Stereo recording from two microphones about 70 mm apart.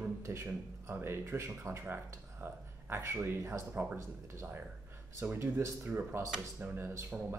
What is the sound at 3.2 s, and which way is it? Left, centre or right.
Speech, right.